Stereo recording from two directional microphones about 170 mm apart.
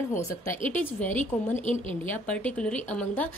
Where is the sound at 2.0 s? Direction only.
10° left (ahead or behind).